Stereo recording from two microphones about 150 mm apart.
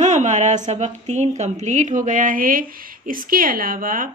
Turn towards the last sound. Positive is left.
turn(degrees=-65)  # may be behind; listen again after turning